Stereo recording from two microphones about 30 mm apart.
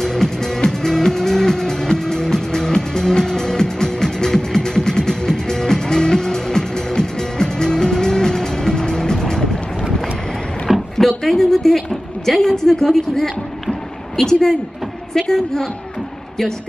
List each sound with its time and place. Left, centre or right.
0.0 s music: centre
11.0 s a sound: centre
15.3 s a woman's voice: centre